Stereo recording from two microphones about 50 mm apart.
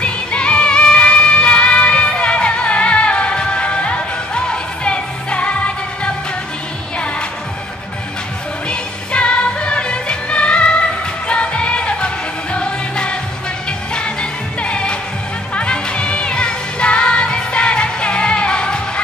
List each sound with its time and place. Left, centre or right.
0.0 s music: left
8.6 s music: left